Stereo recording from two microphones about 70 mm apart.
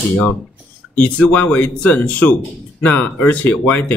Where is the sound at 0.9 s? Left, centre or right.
Centre.